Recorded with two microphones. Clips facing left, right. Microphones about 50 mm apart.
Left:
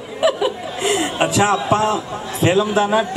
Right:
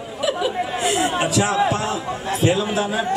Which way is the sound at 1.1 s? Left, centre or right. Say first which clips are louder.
Left 2 dB; left.